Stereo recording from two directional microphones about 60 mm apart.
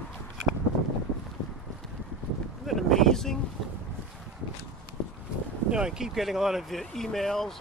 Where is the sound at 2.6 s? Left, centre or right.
Centre.